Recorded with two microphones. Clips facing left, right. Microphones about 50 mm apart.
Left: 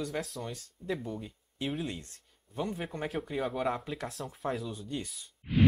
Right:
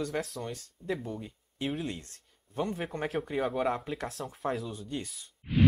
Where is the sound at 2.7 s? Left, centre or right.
Centre.